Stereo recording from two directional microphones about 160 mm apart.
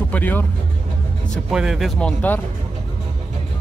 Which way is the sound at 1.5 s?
5° right (ahead or behind).